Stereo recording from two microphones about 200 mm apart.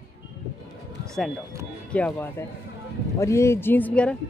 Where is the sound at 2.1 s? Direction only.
15° left (ahead or behind).